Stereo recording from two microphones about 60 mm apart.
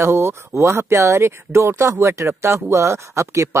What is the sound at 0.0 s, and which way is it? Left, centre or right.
Speech, right.